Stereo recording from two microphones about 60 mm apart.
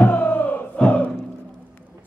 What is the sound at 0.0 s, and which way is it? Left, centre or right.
Crowd, left.